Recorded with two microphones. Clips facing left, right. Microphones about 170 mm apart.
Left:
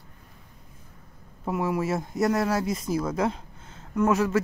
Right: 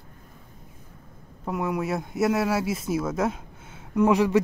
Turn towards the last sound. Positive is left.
turn(degrees=-15)  # may be behind; listen again after turning